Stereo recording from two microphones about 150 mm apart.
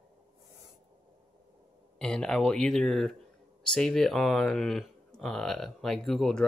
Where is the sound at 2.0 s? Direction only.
5° left (ahead or behind).